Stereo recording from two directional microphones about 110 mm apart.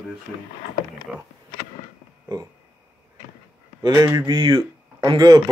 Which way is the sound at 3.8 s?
30° right (ahead or behind).